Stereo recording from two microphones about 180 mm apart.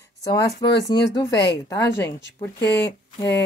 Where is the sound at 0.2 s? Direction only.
20° left (ahead or behind).